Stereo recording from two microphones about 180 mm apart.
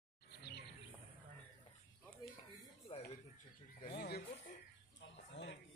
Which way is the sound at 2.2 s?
25° left (ahead or behind).